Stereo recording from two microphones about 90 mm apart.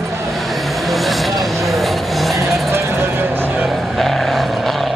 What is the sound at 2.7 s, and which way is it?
Vehicle, 30° right (ahead or behind).